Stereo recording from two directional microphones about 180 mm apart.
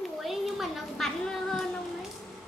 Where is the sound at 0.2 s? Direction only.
Centre (ahead or behind).